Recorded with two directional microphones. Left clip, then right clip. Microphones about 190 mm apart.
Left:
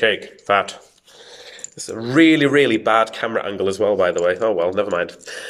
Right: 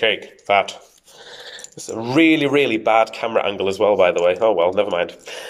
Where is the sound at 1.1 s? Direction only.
15° left (ahead or behind).